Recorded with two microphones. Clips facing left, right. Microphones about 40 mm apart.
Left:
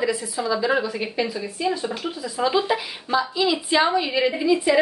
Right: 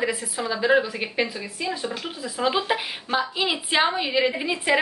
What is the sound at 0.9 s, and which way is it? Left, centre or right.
A woman's voice, right.